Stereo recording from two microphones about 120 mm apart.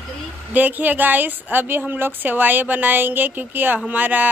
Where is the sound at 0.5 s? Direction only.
15° right (ahead or behind).